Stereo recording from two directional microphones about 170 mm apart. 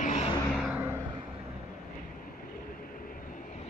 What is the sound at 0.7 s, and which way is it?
Vehicle, 15° right (ahead or behind).